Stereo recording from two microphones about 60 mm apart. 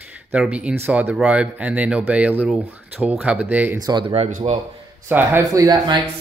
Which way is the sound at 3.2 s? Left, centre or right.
Right.